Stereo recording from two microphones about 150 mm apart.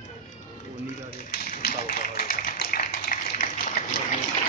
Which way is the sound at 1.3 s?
80° left.